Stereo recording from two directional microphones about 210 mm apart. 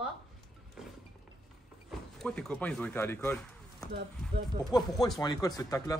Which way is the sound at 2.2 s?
5° left (ahead or behind).